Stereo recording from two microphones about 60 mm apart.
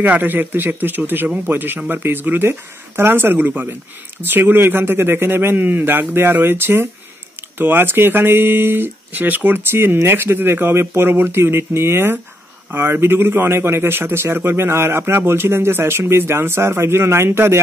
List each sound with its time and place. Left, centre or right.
0.0 s a man's voice: right